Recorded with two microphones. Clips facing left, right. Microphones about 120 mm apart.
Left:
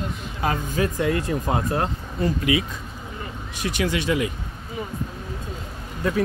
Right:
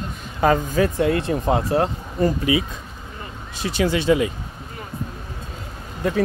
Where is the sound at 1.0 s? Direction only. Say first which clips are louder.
Right 3 dB; 30° right (ahead or behind).